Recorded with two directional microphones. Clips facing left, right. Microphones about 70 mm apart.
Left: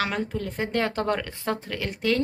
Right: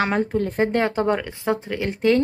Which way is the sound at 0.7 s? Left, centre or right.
Right.